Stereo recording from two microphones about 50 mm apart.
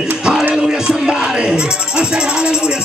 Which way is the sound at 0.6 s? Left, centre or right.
Centre.